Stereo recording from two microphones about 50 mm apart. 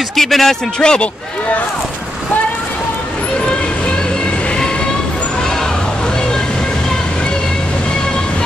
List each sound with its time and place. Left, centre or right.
0.1 s speech: centre
0.7 s speech: centre